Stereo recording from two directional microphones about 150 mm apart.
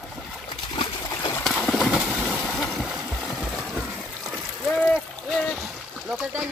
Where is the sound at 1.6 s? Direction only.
5° left (ahead or behind).